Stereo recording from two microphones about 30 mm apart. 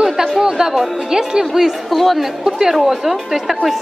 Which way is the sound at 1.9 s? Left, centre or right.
Centre.